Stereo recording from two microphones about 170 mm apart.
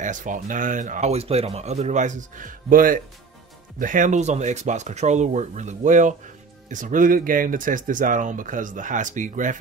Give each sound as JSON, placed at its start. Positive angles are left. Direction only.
{"t": 0.0, "sound": "speech", "side_deg": -50}